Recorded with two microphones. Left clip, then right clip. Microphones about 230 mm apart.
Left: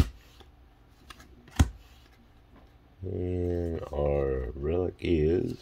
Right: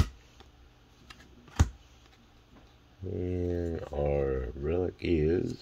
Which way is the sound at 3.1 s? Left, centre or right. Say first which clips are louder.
Left 2 dB; centre.